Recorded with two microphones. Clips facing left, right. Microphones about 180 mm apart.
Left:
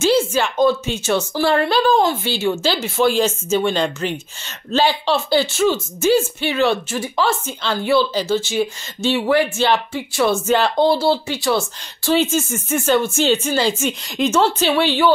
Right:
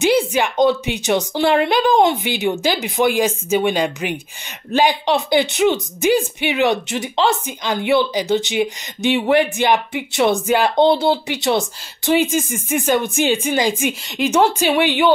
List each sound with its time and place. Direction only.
0.0 s a woman's voice: 15° right (ahead or behind)
14.0 s a woman's voice: centre (ahead or behind)
14.3 s a woman's voice: 15° right (ahead or behind)